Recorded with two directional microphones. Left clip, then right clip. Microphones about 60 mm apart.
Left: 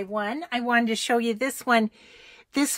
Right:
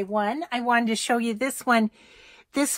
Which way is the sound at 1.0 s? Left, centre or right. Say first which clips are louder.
Left 1 dB; right.